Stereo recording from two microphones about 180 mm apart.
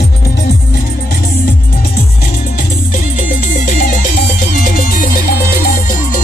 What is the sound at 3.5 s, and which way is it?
Music, 45° left (ahead or behind).